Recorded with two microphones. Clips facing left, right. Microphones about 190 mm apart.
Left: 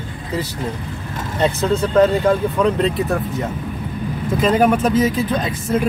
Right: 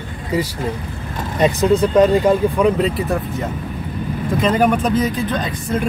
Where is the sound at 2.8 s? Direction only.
Centre (ahead or behind).